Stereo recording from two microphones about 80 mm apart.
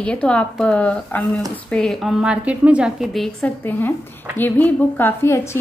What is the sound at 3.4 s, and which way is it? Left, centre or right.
A woman's voice, left.